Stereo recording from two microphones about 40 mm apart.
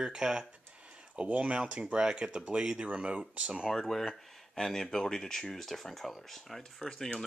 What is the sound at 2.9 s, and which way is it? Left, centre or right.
Speech, right.